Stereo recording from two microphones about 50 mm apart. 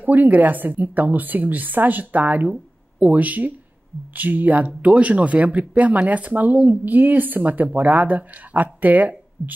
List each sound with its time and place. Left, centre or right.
0.0 s speech: right